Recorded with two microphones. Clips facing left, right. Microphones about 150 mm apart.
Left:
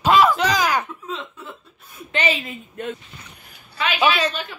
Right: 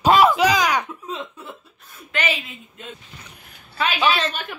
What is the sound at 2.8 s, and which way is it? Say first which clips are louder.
Speech: left 10 dB; 60° left (ahead or behind).